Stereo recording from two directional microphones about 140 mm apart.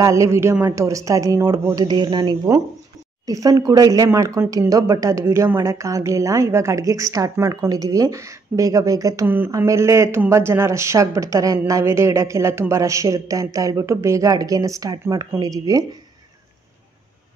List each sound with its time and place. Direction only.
0.0 s speech: 20° right (ahead or behind)